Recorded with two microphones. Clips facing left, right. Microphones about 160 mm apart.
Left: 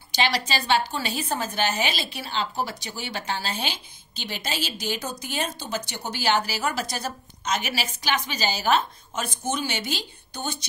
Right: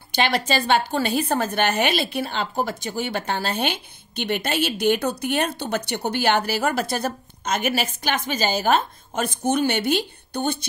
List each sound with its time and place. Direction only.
0.1 s speech: 55° right (ahead or behind)